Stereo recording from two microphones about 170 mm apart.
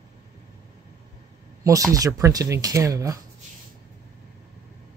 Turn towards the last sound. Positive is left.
turn(degrees=-20)  # may be behind; listen again after turning